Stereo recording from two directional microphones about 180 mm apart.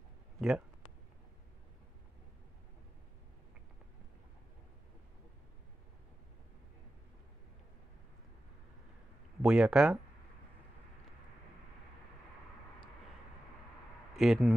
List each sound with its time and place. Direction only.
0.4 s speech: 5° right (ahead or behind)
9.4 s speech: 5° right (ahead or behind)
14.1 s speech: centre (ahead or behind)